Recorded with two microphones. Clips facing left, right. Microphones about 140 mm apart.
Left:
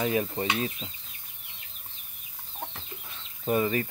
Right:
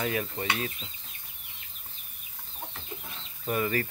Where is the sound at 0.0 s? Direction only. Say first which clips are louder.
Left 4 dB; 25° left (ahead or behind).